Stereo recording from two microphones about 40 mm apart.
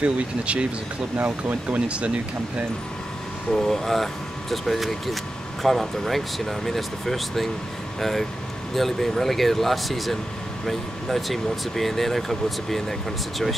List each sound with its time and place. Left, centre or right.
0.0 s speech: right
1.1 s speech: right
3.5 s speech: centre